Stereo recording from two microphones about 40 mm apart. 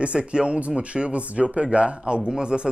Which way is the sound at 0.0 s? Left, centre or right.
Right.